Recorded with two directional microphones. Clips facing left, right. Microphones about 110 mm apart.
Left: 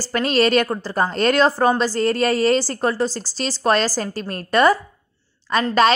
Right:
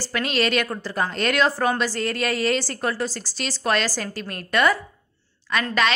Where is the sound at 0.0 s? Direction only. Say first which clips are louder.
Left 5 dB; 40° left (ahead or behind).